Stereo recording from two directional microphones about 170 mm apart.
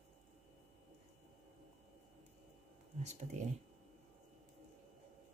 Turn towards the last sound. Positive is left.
turn(degrees=-40)  # may be behind; listen again after turning